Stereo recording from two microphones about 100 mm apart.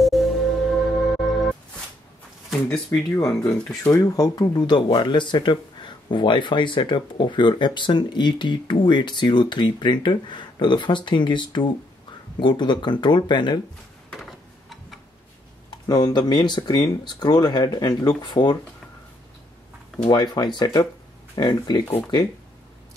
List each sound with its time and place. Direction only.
0.0 s music: centre (ahead or behind)
2.7 s speech: 5° left (ahead or behind)
3.8 s speech: 35° left (ahead or behind)
15.7 s speech: 45° left (ahead or behind)
20.1 s speech: 45° left (ahead or behind)